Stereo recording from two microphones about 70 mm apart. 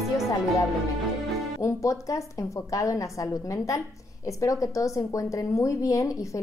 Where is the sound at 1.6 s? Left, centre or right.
Left.